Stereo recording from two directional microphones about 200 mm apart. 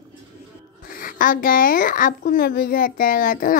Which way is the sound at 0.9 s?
45° left (ahead or behind).